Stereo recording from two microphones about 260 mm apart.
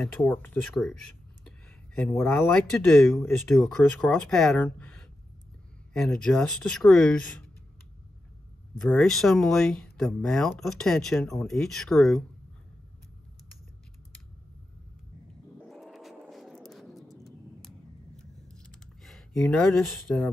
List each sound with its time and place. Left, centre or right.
0.0 s speech: centre
2.1 s speech: centre
5.9 s speech: centre
8.7 s speech: centre
15.6 s vehicle: centre